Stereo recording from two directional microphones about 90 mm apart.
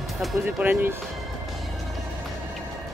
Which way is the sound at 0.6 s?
20° right (ahead or behind).